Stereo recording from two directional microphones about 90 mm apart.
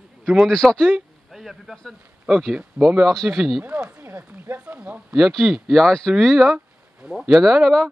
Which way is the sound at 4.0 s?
25° right (ahead or behind).